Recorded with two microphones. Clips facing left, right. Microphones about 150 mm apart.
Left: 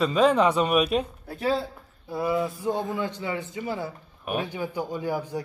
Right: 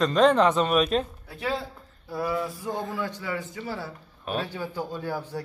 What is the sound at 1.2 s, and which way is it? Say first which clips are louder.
Speech: left 4 dB; 40° left (ahead or behind).